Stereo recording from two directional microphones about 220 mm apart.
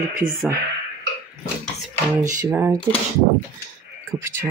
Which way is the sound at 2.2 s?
15° right (ahead or behind).